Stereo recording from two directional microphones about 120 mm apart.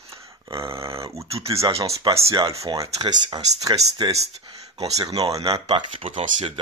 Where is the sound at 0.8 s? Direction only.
25° right (ahead or behind).